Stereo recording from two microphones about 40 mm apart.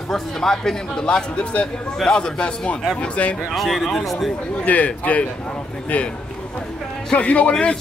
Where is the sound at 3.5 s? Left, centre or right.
Centre.